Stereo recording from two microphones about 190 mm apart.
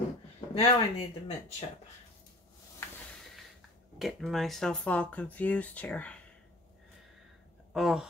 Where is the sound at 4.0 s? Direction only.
Centre (ahead or behind).